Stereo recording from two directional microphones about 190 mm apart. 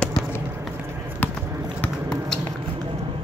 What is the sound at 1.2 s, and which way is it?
Run, 10° left (ahead or behind).